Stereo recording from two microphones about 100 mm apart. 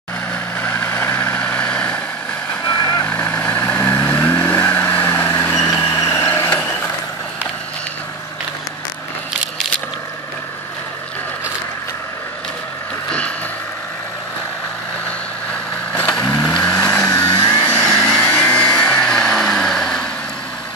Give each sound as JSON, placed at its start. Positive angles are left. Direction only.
{"t": 0.3, "sound": "vehicle", "side_deg": 20}
{"t": 15.9, "sound": "vehicle", "side_deg": 15}
{"t": 17.1, "sound": "vehicle", "side_deg": 40}
{"t": 18.1, "sound": "vehicle", "side_deg": 15}